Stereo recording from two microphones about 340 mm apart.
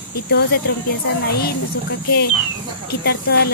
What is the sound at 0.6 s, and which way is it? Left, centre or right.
Speech, left.